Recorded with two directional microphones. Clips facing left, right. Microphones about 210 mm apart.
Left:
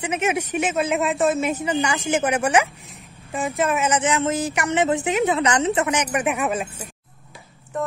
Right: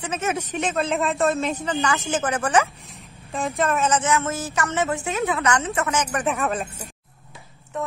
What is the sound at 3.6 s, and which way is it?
Speech, 15° left (ahead or behind).